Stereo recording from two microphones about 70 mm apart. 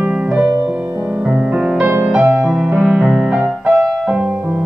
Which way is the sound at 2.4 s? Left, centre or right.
Centre.